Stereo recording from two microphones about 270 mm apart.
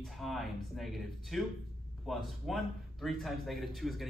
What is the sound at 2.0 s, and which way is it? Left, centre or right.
A man's voice, centre.